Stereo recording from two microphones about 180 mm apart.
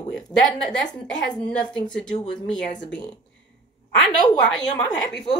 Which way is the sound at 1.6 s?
25° left (ahead or behind).